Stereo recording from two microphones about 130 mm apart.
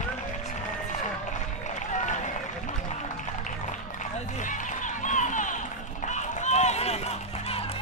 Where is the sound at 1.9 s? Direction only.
70° left (ahead or behind).